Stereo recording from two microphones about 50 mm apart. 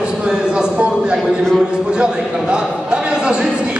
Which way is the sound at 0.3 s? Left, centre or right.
Centre.